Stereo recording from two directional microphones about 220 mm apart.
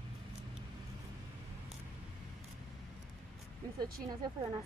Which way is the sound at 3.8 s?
20° right (ahead or behind).